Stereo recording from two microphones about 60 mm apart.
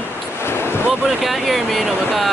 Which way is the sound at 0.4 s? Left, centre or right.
Left.